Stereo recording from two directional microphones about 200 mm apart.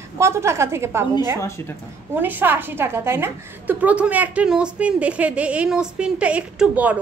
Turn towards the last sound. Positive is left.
turn(degrees=-5)  # may be behind; listen again after turning